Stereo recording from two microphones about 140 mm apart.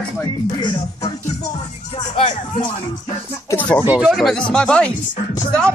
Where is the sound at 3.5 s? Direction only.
10° left (ahead or behind).